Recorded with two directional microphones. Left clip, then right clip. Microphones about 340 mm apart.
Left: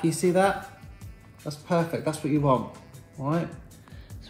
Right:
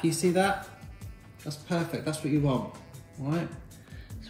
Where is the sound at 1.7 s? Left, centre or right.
Centre.